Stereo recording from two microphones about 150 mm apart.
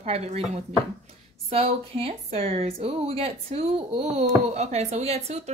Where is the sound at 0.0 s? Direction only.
45° right (ahead or behind).